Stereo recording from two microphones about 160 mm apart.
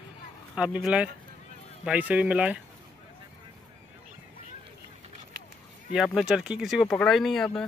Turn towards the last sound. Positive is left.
turn(degrees=5)  # may be behind; listen again after turning